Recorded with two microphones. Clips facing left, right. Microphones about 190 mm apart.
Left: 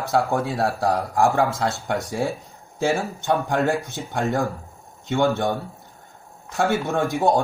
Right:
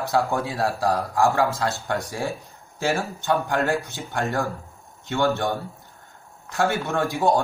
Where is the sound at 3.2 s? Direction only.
20° left (ahead or behind).